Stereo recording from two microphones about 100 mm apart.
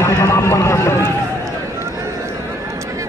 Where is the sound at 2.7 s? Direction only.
30° right (ahead or behind).